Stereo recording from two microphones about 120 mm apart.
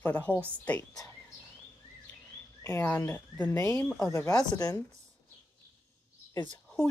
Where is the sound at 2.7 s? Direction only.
20° left (ahead or behind).